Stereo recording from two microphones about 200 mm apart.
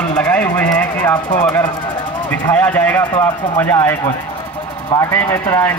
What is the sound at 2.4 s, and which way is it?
Speech, 10° left (ahead or behind).